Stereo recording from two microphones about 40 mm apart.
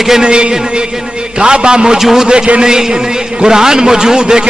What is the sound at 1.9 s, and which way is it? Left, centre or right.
Speech, centre.